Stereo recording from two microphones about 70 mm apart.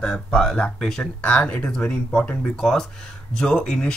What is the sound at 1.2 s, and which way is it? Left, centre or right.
Speech, centre.